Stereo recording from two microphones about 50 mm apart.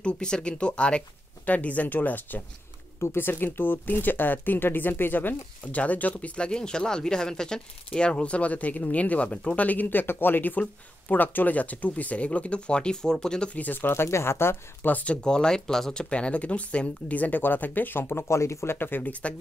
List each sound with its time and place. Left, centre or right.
0.0 s speech: centre; by 5.3 s left
5.7 s speech: left
9.7 s speech: left; by 13.5 s centre
13.6 s speech: left
14.0 s speech: left
14.9 s speech: left
15.2 s speech: centre; by 18.2 s left
18.3 s speech: left
18.8 s speech: left